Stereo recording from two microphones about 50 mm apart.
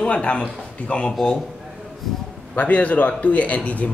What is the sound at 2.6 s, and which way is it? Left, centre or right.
A man's voice, left.